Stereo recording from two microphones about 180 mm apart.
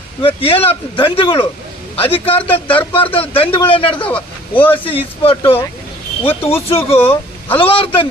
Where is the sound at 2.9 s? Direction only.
30° left (ahead or behind).